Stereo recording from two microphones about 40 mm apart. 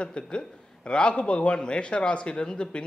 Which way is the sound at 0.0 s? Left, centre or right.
Left.